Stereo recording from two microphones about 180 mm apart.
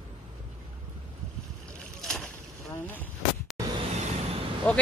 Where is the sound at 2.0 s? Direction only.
5° left (ahead or behind).